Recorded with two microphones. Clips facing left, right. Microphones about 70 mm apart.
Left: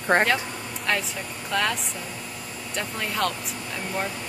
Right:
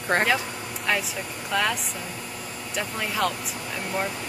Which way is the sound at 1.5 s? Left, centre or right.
Centre.